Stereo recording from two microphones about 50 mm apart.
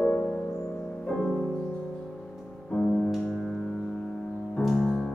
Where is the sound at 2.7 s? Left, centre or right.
Left.